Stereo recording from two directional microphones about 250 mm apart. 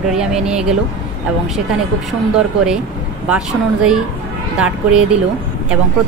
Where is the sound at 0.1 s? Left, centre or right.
Centre.